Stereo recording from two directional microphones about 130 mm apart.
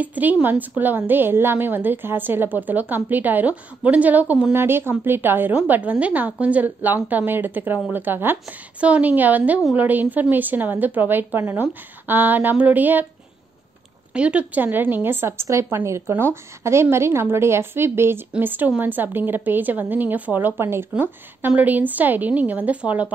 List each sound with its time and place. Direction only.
0.0 s a woman's voice: 10° right (ahead or behind)
14.1 s a woman's voice: 10° right (ahead or behind)